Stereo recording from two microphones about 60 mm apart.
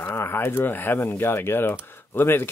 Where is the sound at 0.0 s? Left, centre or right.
Left.